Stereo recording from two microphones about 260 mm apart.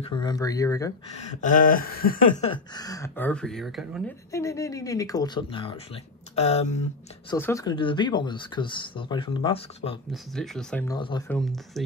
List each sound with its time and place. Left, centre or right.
0.0 s speech: centre
1.1 s a sound: left; by 4.0 s centre
4.3 s speech: centre
6.3 s a sound: left
7.2 s speech: centre
10.1 s speech: centre
10.9 s speech: centre
11.2 s speech: centre